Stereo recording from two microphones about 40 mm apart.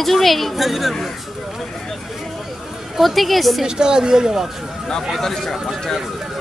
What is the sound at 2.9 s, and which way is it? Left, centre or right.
Speech, centre.